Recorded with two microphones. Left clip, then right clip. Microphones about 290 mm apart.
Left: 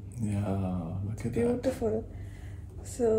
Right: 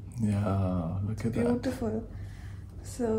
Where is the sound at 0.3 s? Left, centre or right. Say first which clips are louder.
Right 2 dB; right.